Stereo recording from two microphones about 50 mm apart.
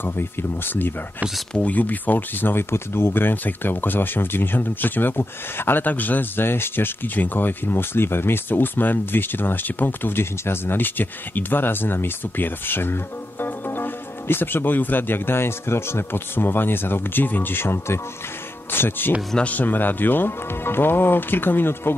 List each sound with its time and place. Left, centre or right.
0.0 s speech: left
1.6 s speech: left
18.7 s speech: left